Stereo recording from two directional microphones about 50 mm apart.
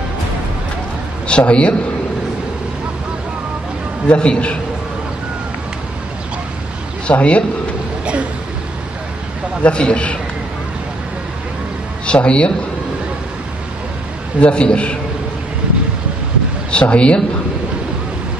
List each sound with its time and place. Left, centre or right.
1.2 s a man's voice: left
4.1 s a man's voice: left
7.1 s a man's voice: left
9.6 s a man's voice: left
12.1 s a man's voice: left
14.4 s a man's voice: centre
16.7 s a man's voice: left